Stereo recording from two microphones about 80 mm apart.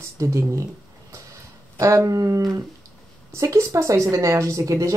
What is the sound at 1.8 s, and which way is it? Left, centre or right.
Speech, right.